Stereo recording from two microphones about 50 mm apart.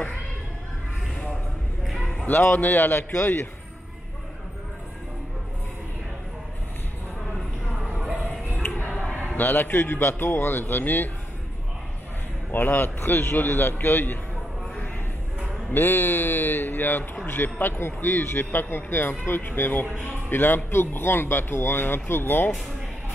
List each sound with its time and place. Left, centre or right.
1.9 s a sound: centre
2.2 s speech: left
9.4 s speech: left
12.4 s speech: left
15.7 s speech: left